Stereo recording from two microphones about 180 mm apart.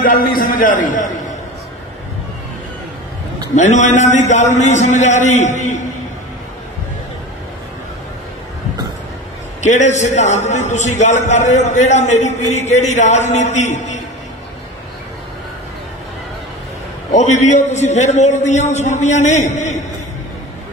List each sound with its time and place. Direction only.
0.0 s a man's voice: 50° left (ahead or behind)
3.5 s a man's voice: 40° left (ahead or behind)
9.6 s a man's voice: 40° left (ahead or behind)
17.1 s a man's voice: 40° left (ahead or behind)